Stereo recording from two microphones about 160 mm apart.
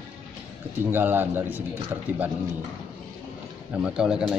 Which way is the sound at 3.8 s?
5° right (ahead or behind).